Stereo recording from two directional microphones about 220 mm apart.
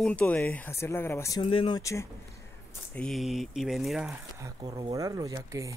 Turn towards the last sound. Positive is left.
turn(degrees=-15)  # may be behind; listen again after turning